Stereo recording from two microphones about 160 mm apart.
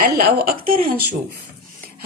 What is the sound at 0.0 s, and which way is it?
A woman's voice, 70° right (ahead or behind).